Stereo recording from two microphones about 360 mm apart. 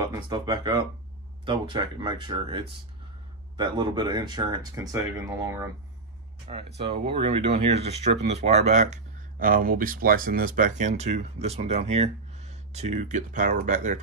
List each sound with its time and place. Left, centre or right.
0.0 s speech: centre